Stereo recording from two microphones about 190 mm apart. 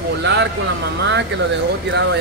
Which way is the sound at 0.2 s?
65° right (ahead or behind).